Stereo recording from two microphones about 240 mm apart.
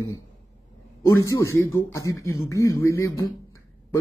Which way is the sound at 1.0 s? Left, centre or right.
Centre.